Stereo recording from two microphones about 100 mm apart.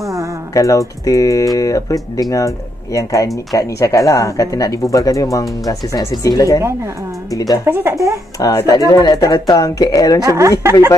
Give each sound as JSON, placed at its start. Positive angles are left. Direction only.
{"t": 0.0, "sound": "music", "side_deg": -35}
{"t": 0.6, "sound": "speech", "side_deg": 35}
{"t": 7.6, "sound": "speech", "side_deg": -25}
{"t": 8.4, "sound": "speech", "side_deg": 40}
{"t": 10.2, "sound": "speech", "side_deg": -30}